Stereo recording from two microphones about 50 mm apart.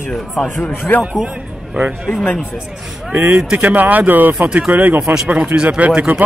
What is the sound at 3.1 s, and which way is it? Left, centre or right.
Speech, right.